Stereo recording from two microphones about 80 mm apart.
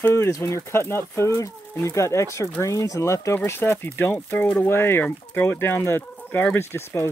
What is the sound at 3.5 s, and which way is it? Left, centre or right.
Speech, left.